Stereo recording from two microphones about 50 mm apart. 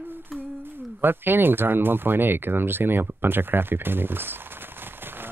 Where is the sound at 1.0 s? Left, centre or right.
Right.